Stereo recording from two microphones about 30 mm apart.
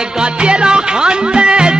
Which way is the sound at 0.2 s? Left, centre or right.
Right.